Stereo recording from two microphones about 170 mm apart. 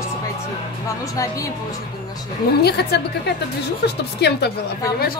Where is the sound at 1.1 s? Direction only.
20° left (ahead or behind).